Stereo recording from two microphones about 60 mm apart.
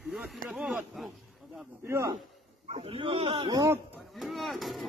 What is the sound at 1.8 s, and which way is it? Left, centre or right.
Speech, right.